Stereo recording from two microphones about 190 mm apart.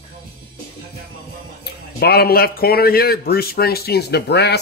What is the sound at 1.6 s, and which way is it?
A man's voice, 55° left (ahead or behind).